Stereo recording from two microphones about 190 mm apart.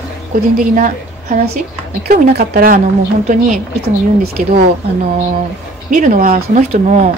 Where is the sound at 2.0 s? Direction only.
55° right (ahead or behind).